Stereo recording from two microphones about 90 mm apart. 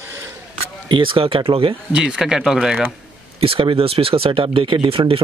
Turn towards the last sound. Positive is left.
turn(degrees=-85)